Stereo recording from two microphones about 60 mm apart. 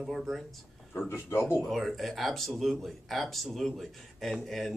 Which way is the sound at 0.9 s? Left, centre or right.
Left.